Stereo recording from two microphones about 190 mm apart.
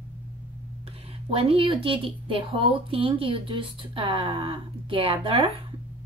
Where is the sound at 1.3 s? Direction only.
30° right (ahead or behind).